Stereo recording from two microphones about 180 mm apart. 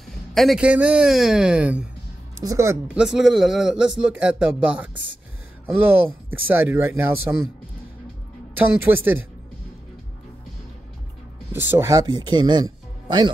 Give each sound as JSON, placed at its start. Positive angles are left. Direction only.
{"t": 0.3, "sound": "speech", "side_deg": 0}
{"t": 2.4, "sound": "speech", "side_deg": -15}
{"t": 8.5, "sound": "speech", "side_deg": -10}
{"t": 11.5, "sound": "speech", "side_deg": -10}